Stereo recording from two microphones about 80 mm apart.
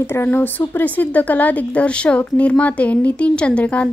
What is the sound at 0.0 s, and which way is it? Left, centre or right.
A woman's voice, left.